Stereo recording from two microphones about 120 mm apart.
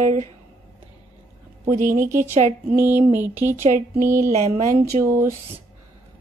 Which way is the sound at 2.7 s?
20° right (ahead or behind).